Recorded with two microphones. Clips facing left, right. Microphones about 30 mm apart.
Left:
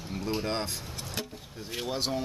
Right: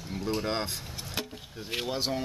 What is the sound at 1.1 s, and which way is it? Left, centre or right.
Speech, right.